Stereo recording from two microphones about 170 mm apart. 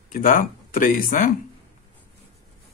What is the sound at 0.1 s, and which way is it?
Speech, 50° left (ahead or behind).